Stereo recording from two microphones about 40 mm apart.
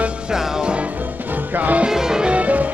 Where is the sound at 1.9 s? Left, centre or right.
Centre.